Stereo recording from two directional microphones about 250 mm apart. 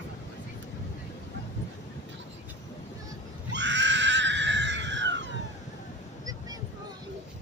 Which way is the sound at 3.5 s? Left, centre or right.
Right.